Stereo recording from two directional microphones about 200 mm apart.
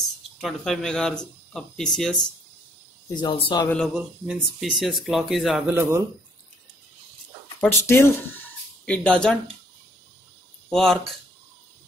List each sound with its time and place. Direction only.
0.4 s speech: centre (ahead or behind)
3.2 s speech: 25° left (ahead or behind)
3.7 s speech: centre (ahead or behind)
5.8 s speech: 10° right (ahead or behind)
7.6 s speech: 10° left (ahead or behind)
10.7 s speech: centre (ahead or behind)